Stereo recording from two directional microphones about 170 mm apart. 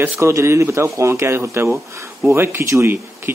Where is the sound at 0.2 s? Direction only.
15° right (ahead or behind).